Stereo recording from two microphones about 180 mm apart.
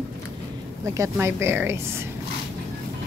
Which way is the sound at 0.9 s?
15° right (ahead or behind).